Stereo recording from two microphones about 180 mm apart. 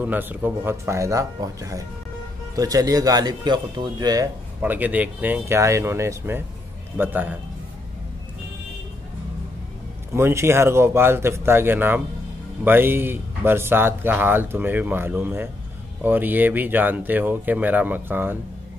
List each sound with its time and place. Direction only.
0.0 s speech: 10° right (ahead or behind)
4.6 s speech: 10° right (ahead or behind)
10.1 s speech: 15° right (ahead or behind)